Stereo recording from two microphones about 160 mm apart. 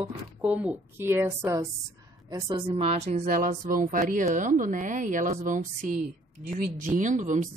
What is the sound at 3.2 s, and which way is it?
A woman's voice, 60° right (ahead or behind).